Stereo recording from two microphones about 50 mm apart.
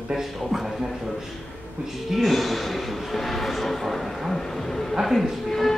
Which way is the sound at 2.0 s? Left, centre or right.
Centre.